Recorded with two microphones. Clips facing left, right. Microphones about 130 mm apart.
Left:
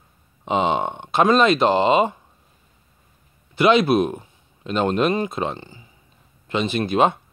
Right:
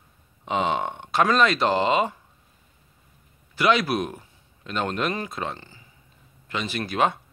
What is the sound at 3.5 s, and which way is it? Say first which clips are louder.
A man's voice: left 6 dB; 25° left (ahead or behind).